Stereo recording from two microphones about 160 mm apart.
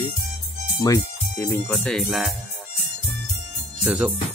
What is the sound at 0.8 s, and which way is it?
Speech, 20° left (ahead or behind).